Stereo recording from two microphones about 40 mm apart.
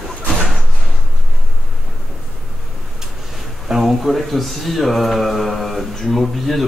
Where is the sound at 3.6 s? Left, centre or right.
Centre.